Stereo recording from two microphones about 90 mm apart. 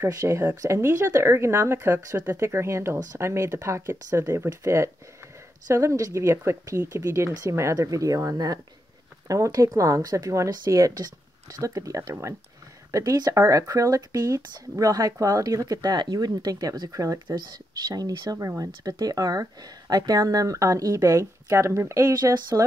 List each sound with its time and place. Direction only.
0.0 s speech: 35° right (ahead or behind)